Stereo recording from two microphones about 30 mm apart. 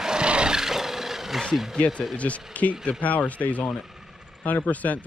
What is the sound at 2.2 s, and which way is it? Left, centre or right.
Speech, left.